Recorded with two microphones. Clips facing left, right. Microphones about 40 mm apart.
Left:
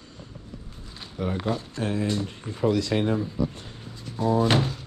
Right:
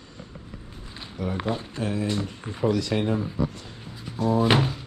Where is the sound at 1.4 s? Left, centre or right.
Right.